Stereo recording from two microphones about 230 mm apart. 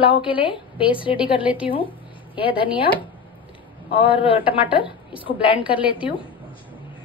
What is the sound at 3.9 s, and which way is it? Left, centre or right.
Speech, left.